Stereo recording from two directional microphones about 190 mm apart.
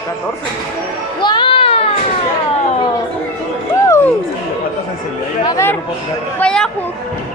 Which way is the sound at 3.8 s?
15° left (ahead or behind).